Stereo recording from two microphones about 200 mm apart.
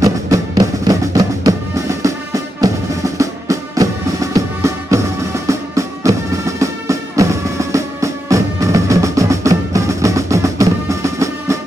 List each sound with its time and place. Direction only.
0.0 s music: 15° right (ahead or behind)